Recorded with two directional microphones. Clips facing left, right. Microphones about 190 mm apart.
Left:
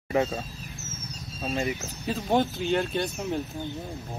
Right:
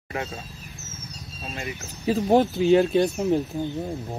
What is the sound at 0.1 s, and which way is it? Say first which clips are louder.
Speech: left 6 dB; 15° left (ahead or behind).